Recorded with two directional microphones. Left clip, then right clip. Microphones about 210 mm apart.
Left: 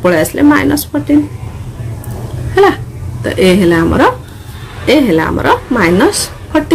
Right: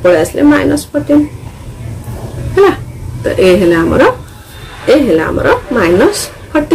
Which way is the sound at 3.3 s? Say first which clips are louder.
Right 2 dB; 30° left (ahead or behind).